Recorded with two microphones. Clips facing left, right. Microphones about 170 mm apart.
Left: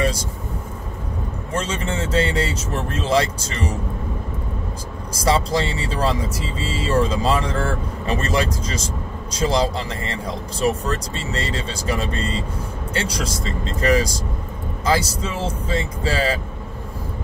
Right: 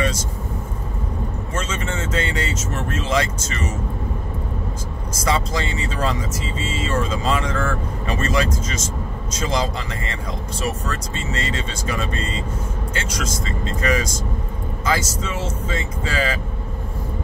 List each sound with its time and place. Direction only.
1.5 s speech: 35° left (ahead or behind)
5.1 s speech: 30° left (ahead or behind)